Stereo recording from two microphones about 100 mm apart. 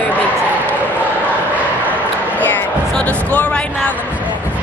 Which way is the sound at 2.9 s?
15° left (ahead or behind).